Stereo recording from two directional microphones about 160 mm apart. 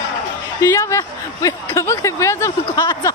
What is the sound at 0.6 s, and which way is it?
Speech, 20° left (ahead or behind).